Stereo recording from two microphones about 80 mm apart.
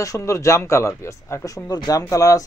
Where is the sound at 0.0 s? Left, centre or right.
Left.